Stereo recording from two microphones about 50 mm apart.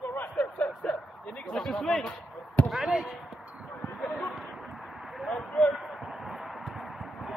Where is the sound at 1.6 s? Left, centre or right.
Centre.